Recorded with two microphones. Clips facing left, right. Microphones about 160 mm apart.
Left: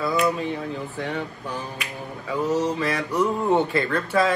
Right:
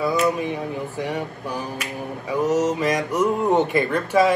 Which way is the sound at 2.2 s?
15° right (ahead or behind).